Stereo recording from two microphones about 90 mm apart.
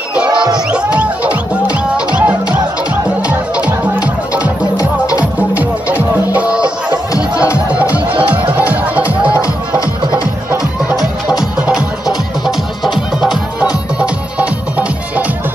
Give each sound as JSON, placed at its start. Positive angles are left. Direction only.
{"t": 0.1, "sound": "music", "side_deg": -10}
{"t": 4.7, "sound": "music", "side_deg": 40}
{"t": 5.5, "sound": "music", "side_deg": -15}
{"t": 9.3, "sound": "music", "side_deg": 40}
{"t": 11.6, "sound": "music", "side_deg": -5}
{"t": 13.6, "sound": "music", "side_deg": -10}